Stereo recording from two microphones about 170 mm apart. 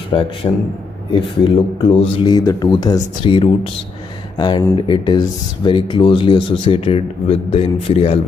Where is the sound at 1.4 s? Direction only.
30° left (ahead or behind).